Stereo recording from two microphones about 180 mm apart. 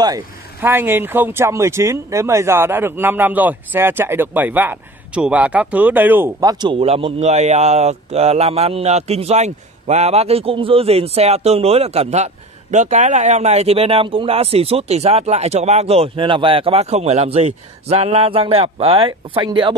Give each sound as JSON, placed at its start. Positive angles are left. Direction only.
{"t": 0.0, "sound": "speech", "side_deg": -15}
{"t": 6.6, "sound": "speech", "side_deg": -30}